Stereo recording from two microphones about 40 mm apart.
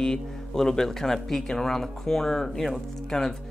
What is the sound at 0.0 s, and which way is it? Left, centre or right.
Speech, centre.